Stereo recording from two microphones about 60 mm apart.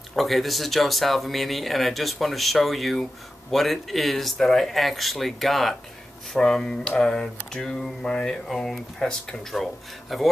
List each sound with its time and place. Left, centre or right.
0.1 s speech: centre
8.5 s speech: centre